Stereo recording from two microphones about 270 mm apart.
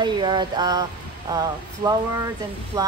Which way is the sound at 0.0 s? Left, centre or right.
Centre.